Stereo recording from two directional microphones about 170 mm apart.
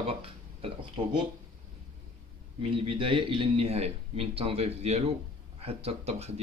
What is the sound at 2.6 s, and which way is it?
A man's voice, 35° right (ahead or behind).